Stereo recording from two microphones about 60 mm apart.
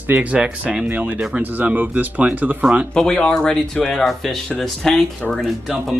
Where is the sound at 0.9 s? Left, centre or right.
Right.